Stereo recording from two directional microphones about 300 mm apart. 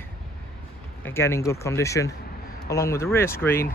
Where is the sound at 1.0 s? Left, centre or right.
Centre.